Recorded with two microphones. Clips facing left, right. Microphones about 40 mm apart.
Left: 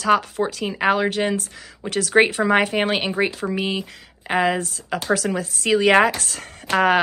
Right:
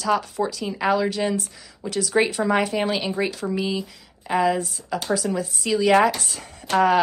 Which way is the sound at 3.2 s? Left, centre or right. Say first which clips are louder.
Left 2 dB; left.